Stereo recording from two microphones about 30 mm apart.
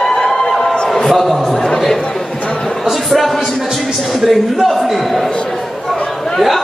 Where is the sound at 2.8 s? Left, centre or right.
Centre.